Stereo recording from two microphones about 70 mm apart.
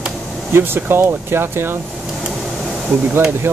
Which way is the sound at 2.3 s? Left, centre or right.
Centre.